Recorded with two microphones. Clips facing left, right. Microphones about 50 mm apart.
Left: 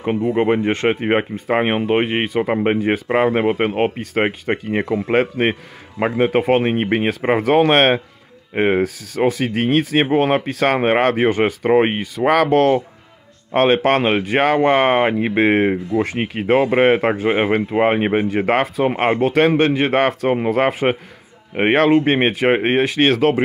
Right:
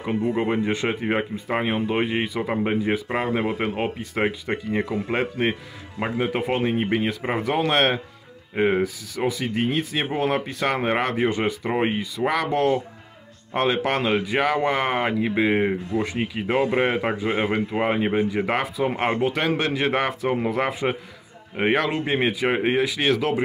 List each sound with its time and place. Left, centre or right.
0.4 s a man's voice: left
8.8 s speech: left
10.1 s a man's voice: left
11.2 s speech: left
12.3 s speech: left
13.5 s a man's voice: left
15.3 s a man's voice: left
19.1 s speech: left
19.4 s a man's voice: left